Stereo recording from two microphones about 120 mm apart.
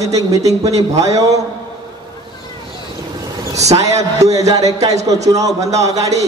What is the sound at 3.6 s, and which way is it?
Speech, 65° right (ahead or behind).